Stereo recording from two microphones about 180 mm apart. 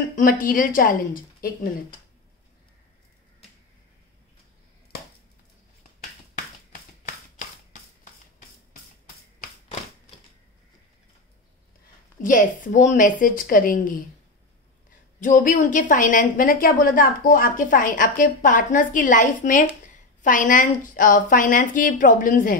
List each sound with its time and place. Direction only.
0.1 s a woman's voice: 50° left (ahead or behind)
7.3 s music: 45° left (ahead or behind)
12.2 s a woman's voice: 45° left (ahead or behind)